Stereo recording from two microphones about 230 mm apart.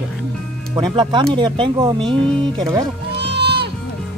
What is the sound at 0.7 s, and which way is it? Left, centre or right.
Speech, centre.